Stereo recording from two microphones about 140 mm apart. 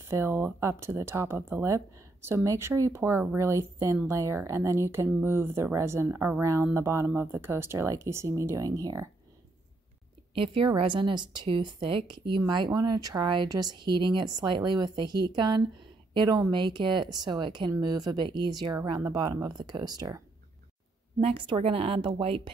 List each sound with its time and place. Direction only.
0.0 s speech: 20° right (ahead or behind)
10.3 s speech: 40° right (ahead or behind)
21.2 s speech: 40° right (ahead or behind)